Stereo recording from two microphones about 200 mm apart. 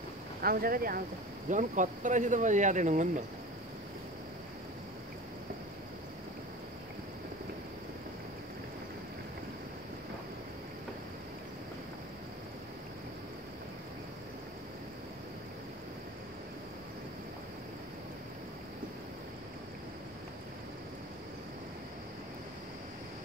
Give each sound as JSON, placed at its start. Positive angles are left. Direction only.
{"t": 0.4, "sound": "speech", "side_deg": -45}